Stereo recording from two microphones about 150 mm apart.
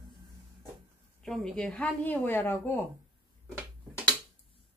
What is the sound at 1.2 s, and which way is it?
Speech, centre (ahead or behind).